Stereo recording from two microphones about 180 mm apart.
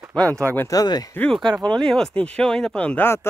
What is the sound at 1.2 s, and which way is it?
Speech, 5° left (ahead or behind).